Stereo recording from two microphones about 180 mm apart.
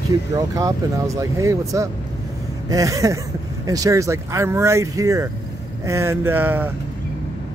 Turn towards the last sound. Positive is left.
turn(degrees=-10)  # may be behind; listen again after turning